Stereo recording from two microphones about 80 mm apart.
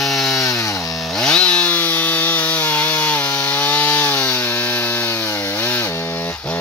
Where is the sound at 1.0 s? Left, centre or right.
Centre.